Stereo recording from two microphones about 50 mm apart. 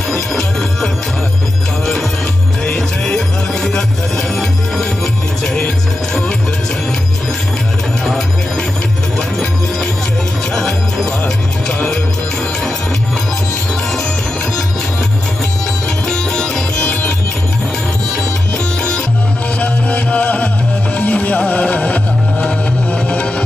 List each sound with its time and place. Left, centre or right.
0.1 s music: centre
2.6 s music: centre
16.1 s music: centre
19.6 s music: left